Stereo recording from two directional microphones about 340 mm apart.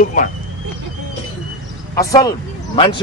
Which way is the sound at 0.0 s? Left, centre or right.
Left.